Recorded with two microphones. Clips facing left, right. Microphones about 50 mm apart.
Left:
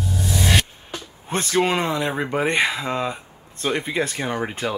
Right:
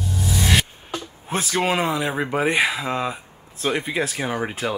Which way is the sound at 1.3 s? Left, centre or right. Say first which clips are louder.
Left 1 dB; centre.